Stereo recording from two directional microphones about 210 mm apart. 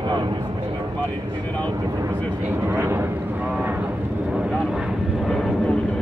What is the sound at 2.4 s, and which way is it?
Vehicle, 10° right (ahead or behind).